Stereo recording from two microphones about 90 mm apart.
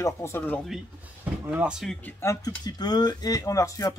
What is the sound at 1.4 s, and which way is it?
Speech, 15° right (ahead or behind).